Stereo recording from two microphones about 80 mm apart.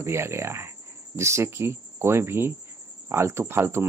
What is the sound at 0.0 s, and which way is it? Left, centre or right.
Speech, right.